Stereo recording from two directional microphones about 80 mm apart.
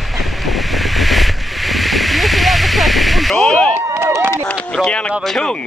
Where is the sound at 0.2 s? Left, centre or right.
Centre.